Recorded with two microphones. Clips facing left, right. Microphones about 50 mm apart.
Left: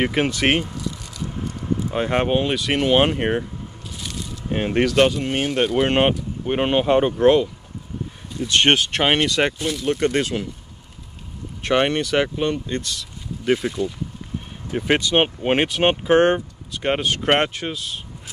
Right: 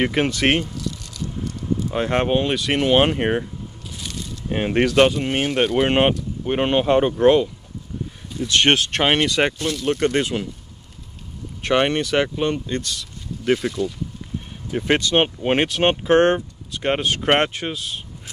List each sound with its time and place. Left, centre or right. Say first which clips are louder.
0.0 s speech: even; centre
0.7 s a sound: even; centre
2.0 s speech: even; centre
3.9 s squish: even; centre
4.5 s speech: right 1 dB; centre
8.6 s speech: even; centre
9.6 s speech: even; centre
9.8 s speech: even; centre
11.6 s speech: even; centre
12.6 s speech: right 1 dB; centre